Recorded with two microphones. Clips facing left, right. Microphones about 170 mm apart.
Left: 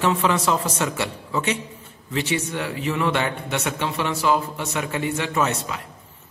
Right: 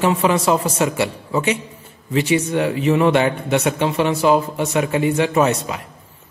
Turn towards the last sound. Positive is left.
turn(degrees=-20)  # may be behind; listen again after turning